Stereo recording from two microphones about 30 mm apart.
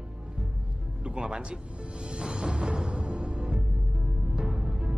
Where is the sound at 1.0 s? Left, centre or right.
Right.